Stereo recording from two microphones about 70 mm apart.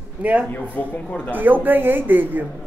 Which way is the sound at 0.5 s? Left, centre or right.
Left.